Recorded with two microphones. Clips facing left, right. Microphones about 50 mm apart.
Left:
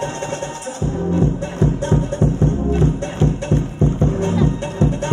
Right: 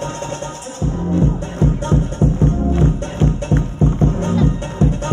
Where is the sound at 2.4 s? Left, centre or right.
Right.